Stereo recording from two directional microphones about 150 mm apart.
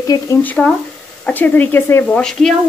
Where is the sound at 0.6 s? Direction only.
Centre (ahead or behind).